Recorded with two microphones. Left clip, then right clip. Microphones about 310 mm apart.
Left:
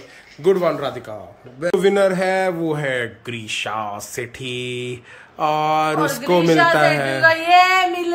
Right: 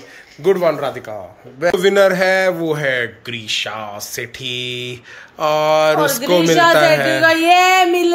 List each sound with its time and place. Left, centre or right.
0.4 s a man's voice: centre
7.2 s female singing: right